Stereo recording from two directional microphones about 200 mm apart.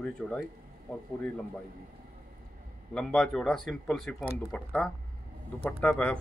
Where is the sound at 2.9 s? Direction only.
5° left (ahead or behind).